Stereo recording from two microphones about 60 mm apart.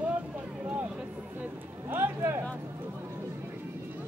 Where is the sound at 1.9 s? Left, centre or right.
Right.